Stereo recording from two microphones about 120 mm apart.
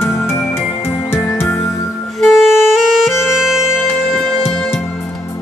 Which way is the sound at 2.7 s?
5° right (ahead or behind).